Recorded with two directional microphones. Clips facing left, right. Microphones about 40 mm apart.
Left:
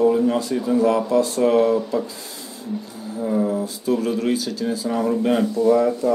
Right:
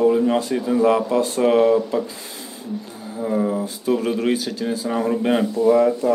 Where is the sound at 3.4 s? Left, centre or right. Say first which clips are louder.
Even; right.